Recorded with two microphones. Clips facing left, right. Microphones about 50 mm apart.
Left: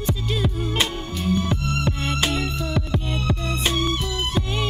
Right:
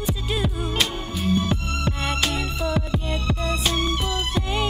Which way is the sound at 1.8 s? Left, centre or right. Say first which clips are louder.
Left 1 dB; centre.